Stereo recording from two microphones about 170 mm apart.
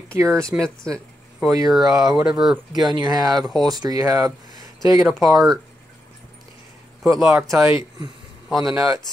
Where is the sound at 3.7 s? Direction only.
20° right (ahead or behind).